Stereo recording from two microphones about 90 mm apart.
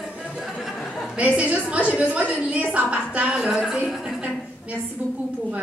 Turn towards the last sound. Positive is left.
turn(degrees=-5)  # may be behind; listen again after turning